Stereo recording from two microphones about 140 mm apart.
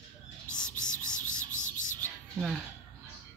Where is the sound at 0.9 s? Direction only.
65° left (ahead or behind).